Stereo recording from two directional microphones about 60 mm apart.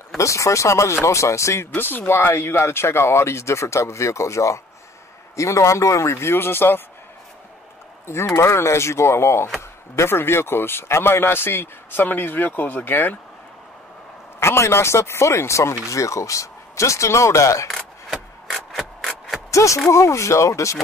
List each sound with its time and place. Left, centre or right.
0.2 s speech: left
1.8 s speech: left
8.4 s speech: left
14.4 s speech: left
17.6 s rub: centre
19.5 s speech: left